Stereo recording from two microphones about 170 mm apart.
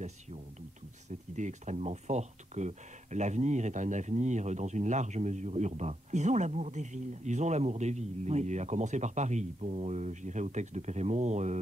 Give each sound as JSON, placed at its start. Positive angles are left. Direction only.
{"t": 1.3, "sound": "speech", "side_deg": -45}